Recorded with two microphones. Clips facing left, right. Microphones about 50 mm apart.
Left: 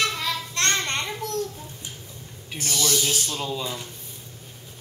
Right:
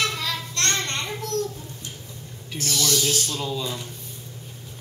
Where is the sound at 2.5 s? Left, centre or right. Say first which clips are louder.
Right 1 dB; centre.